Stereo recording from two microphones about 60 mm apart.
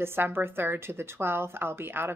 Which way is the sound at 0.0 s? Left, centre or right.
Right.